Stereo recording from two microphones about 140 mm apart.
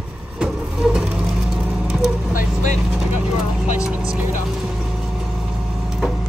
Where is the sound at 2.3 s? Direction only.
60° left (ahead or behind).